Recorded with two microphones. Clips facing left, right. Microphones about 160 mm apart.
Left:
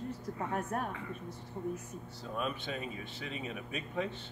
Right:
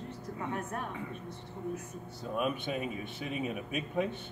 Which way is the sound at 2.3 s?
15° right (ahead or behind).